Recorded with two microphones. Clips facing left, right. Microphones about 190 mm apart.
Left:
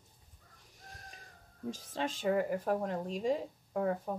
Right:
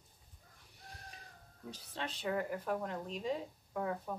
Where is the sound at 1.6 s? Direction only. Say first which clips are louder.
Left 7 dB; 45° left (ahead or behind).